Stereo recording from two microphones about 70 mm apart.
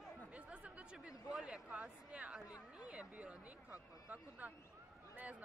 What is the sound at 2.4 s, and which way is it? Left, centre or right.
Chatter, left.